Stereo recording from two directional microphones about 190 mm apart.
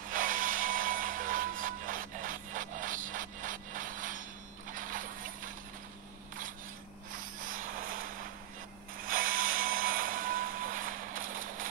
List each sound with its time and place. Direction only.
0.1 s a sound: 45° right (ahead or behind)
7.4 s music: 45° right (ahead or behind)
9.0 s vehicle: 45° right (ahead or behind)